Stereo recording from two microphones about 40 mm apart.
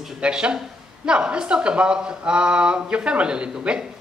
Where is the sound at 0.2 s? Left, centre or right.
Right.